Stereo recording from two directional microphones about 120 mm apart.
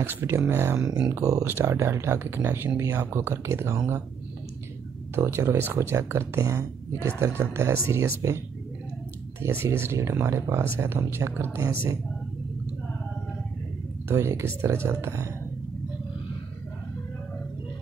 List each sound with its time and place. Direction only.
0.0 s speech: 20° right (ahead or behind)
0.7 s speech: 5° right (ahead or behind)
1.0 s speech: 25° right (ahead or behind)
5.1 s speech: 20° right (ahead or behind)
9.4 s speech: 20° right (ahead or behind)
14.0 s speech: 20° right (ahead or behind)